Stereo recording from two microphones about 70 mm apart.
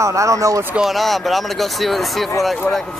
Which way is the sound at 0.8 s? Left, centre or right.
Centre.